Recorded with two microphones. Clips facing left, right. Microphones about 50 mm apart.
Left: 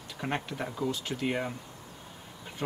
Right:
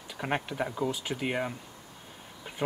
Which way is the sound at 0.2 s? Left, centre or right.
Centre.